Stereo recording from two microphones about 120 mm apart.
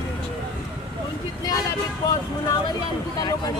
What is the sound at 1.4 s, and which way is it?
Vehicle, 30° left (ahead or behind).